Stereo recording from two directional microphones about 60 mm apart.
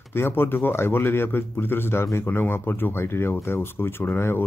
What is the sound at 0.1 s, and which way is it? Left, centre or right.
Speech, left.